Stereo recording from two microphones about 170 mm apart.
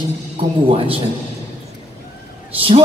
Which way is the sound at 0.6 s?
35° right (ahead or behind).